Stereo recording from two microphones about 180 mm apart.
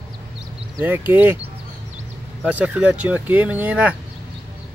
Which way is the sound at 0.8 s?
10° right (ahead or behind).